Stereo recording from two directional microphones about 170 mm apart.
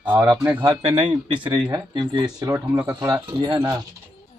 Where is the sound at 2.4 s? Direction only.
20° right (ahead or behind).